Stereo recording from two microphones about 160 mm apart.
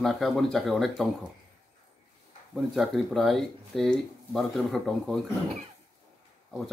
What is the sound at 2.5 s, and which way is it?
Speech, centre (ahead or behind).